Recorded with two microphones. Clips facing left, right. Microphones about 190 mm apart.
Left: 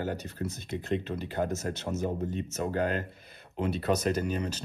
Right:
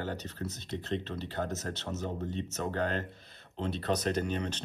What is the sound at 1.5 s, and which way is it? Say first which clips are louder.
Speech: left 4 dB; 50° left (ahead or behind).